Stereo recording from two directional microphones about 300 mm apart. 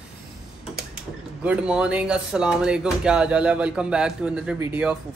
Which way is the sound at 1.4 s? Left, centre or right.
Centre.